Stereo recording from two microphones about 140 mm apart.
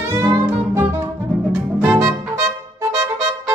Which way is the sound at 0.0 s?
20° right (ahead or behind).